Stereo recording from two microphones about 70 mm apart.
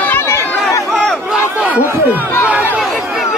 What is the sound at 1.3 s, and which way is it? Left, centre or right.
Crowd, centre.